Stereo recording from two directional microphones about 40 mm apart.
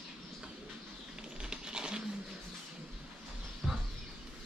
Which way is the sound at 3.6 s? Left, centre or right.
Centre.